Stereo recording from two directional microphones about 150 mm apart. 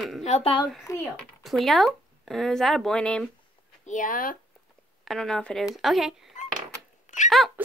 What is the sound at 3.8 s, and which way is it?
Speech, 60° left (ahead or behind).